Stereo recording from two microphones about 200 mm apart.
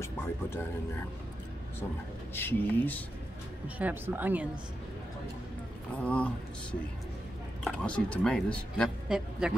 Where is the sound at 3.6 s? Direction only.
10° right (ahead or behind).